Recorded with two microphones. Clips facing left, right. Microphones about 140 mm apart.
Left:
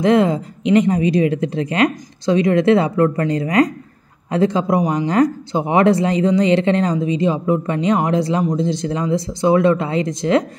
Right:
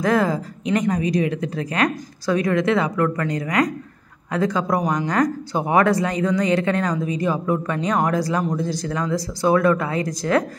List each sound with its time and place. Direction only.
0.0 s speech: 25° left (ahead or behind)